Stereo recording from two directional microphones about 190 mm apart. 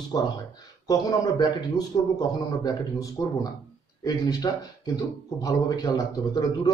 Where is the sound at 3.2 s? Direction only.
15° left (ahead or behind).